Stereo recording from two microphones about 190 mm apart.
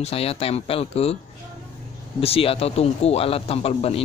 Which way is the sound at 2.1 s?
30° left (ahead or behind).